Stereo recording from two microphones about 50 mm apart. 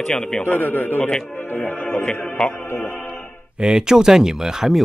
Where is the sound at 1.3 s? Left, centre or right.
Left.